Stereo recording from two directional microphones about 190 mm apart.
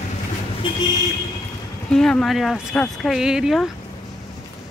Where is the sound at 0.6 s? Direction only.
25° left (ahead or behind).